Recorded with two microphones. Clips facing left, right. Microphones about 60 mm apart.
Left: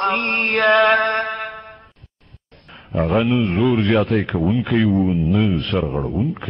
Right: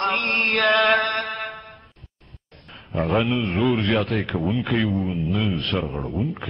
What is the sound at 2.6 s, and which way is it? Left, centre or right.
A man's voice, centre.